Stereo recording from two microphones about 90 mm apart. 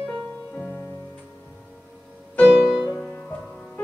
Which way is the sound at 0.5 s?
5° left (ahead or behind).